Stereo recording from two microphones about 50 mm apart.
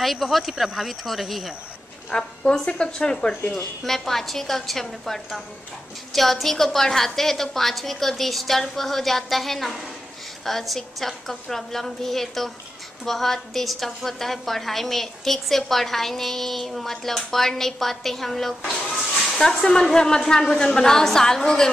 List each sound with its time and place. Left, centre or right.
0.0 s a woman's voice: centre
2.0 s speech: centre
3.5 s a woman's voice: centre